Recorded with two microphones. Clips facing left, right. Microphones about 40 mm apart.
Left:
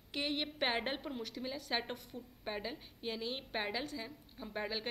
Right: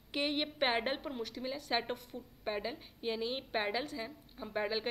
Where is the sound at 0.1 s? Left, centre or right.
Centre.